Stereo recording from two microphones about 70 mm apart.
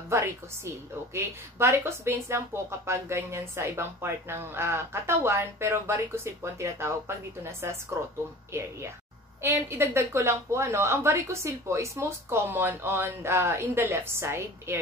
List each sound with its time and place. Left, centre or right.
0.1 s a woman's voice: right